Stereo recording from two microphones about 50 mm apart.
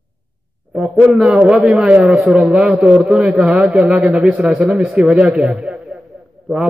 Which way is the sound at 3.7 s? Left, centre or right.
Right.